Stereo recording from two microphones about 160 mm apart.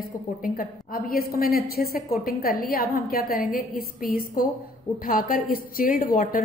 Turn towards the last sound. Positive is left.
turn(degrees=60)  # may be behind; listen again after turning